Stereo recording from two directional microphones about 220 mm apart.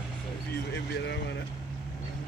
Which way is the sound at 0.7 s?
50° left (ahead or behind).